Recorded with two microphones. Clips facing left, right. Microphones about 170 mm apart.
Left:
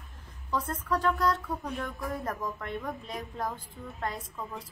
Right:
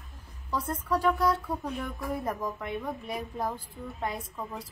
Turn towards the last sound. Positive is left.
turn(degrees=-10)  # may be behind; listen again after turning